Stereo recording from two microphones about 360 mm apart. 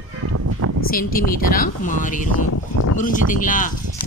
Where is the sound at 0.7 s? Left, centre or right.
Left.